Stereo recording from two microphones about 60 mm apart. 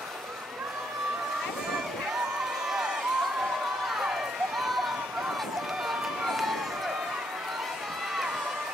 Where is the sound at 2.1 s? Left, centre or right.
Centre.